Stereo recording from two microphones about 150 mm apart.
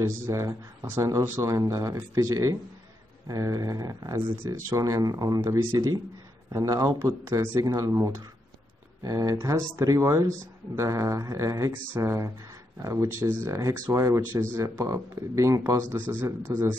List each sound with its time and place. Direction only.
0.0 s a man's voice: 20° right (ahead or behind)